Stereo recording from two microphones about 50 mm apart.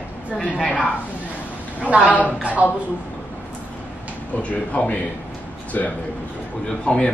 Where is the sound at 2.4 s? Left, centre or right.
Right.